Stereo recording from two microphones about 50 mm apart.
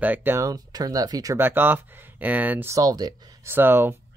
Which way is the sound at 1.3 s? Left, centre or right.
Right.